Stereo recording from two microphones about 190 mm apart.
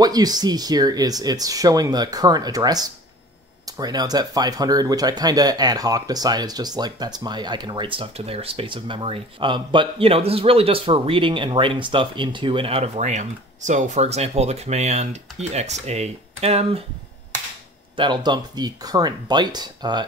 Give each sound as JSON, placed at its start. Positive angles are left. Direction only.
{"t": 0.0, "sound": "speech", "side_deg": -20}
{"t": 17.9, "sound": "speech", "side_deg": -25}